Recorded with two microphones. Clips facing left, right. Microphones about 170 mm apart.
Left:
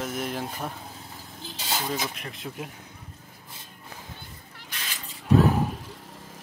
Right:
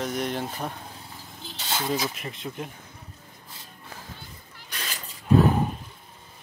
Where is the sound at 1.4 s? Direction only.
Centre (ahead or behind).